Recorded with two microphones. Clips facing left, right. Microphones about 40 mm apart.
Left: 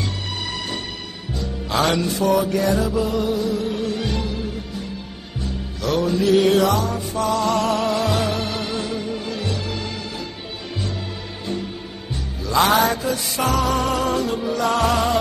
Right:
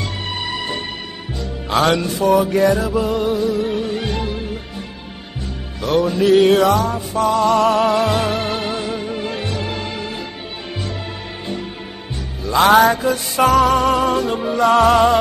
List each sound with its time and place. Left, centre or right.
0.4 s music: right
1.8 s music: right
5.8 s music: right
12.4 s music: right